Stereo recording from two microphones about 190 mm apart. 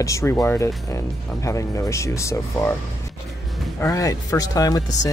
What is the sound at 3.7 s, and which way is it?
Speech, 15° left (ahead or behind).